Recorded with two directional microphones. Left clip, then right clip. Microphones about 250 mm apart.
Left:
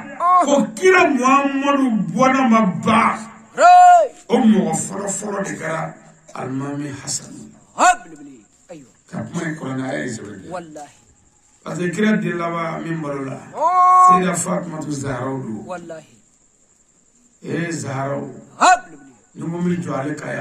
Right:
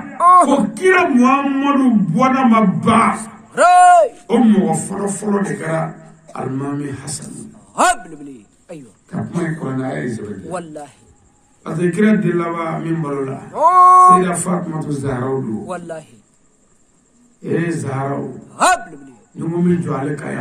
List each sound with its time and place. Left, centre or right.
0.2 s a sound: right
0.5 s a man's voice: centre
3.5 s speech: right
4.3 s a man's voice: centre
7.3 s dog: right
9.3 s a man's voice: centre
10.5 s speech: right
11.6 s a man's voice: centre
13.5 s speech: right
14.2 s a man's voice: centre
15.6 s speech: right
17.4 s a man's voice: centre
18.5 s dog: right
19.3 s a man's voice: centre